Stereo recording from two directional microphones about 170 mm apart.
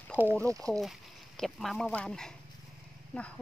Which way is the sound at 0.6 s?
Centre (ahead or behind).